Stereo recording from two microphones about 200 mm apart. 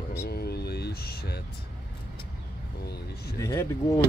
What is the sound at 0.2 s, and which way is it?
Vehicle, 50° left (ahead or behind).